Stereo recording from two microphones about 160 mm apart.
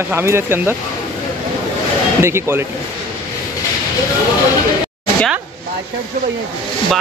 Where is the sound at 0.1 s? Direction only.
15° right (ahead or behind).